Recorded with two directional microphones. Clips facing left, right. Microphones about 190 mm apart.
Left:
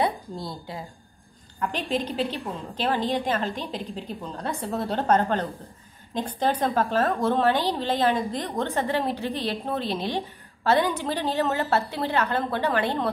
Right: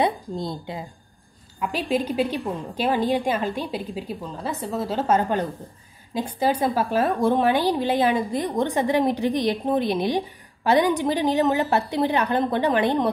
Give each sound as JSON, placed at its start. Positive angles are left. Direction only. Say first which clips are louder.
{"t": 0.0, "sound": "a woman's voice", "louder": "right 3 dB", "side_deg": -20}
{"t": 1.6, "sound": "a woman's voice", "louder": "right 3 dB", "side_deg": -10}